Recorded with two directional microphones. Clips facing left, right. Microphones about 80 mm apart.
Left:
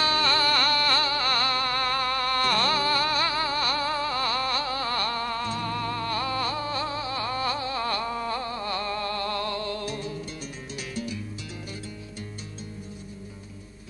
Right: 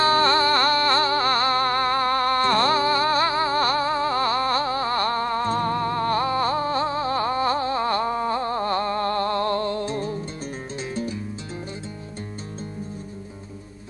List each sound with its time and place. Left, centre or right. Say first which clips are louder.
0.0 s music: right 6 dB; right